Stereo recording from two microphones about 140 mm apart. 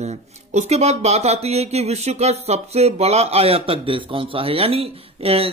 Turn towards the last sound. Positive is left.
turn(degrees=-45)  # may be behind; listen again after turning